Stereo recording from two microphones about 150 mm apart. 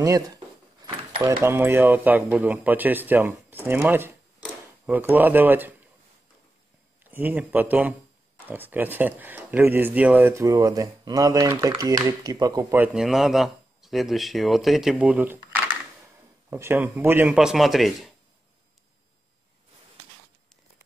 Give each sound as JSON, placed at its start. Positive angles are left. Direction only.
{"t": 0.0, "sound": "speech", "side_deg": -20}
{"t": 1.4, "sound": "speech", "side_deg": -15}
{"t": 4.4, "sound": "a sound", "side_deg": -10}
{"t": 7.1, "sound": "speech", "side_deg": -10}
{"t": 12.8, "sound": "speech", "side_deg": -5}